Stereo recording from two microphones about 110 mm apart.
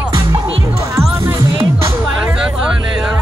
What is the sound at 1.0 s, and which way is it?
Music, 25° right (ahead or behind).